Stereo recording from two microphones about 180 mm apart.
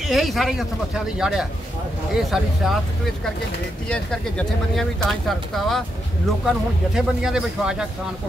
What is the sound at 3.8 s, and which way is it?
Speech, 5° left (ahead or behind).